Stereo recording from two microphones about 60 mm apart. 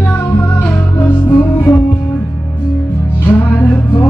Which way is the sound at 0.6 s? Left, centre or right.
Left.